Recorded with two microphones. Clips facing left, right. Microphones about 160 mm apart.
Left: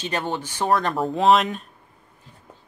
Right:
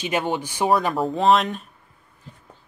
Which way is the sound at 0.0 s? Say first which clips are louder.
Right 3 dB; 10° right (ahead or behind).